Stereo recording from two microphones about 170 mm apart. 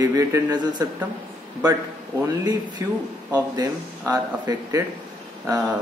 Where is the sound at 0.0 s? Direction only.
20° right (ahead or behind).